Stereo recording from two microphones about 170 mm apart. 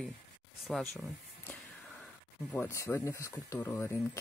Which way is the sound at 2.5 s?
15° left (ahead or behind).